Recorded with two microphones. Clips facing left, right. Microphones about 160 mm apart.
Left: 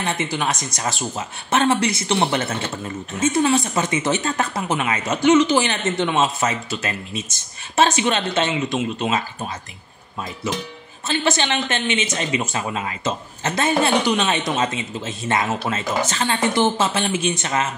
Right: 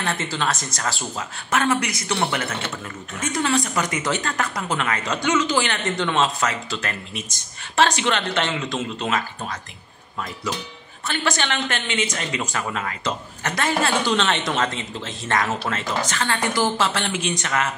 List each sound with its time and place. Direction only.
0.0 s speech: 20° left (ahead or behind)
11.1 s speech: 25° left (ahead or behind)